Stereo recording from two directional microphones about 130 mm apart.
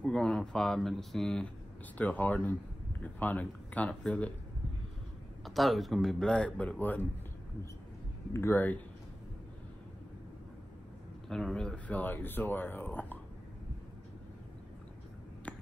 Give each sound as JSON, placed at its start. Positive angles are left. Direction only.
{"t": 0.0, "sound": "a man's voice", "side_deg": 5}
{"t": 5.4, "sound": "a man's voice", "side_deg": 0}
{"t": 8.3, "sound": "speech", "side_deg": 20}
{"t": 11.2, "sound": "speech", "side_deg": 5}